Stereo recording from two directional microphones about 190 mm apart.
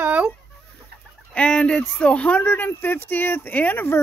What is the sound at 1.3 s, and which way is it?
Speech, 5° left (ahead or behind).